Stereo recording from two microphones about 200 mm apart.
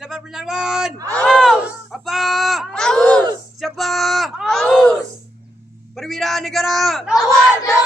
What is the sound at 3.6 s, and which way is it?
Groan, centre (ahead or behind).